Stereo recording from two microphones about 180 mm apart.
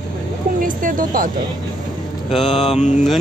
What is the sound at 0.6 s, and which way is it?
Speech, 50° right (ahead or behind).